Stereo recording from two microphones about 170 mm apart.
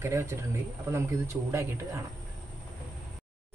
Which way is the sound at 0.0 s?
15° right (ahead or behind).